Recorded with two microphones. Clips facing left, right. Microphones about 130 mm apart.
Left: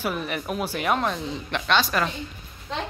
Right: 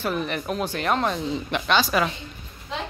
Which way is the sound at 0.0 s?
5° left (ahead or behind).